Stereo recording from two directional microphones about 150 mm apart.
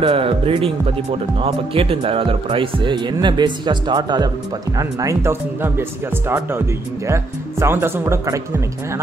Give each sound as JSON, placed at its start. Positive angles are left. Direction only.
{"t": 0.0, "sound": "speech", "side_deg": -35}
{"t": 7.6, "sound": "speech", "side_deg": -15}